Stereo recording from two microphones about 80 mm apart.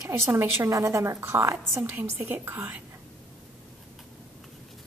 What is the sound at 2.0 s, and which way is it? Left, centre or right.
Speech, right.